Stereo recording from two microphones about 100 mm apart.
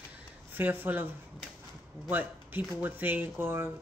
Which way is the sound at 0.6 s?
20° right (ahead or behind).